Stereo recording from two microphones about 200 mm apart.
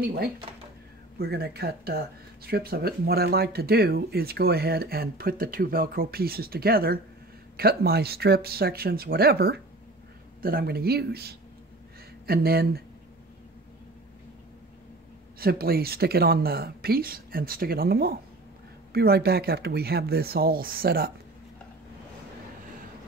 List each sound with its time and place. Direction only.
0.0 s speech: 50° right (ahead or behind)
15.3 s speech: 50° right (ahead or behind)